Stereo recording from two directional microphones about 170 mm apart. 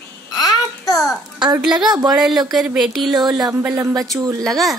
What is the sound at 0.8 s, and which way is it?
Babbling, centre (ahead or behind).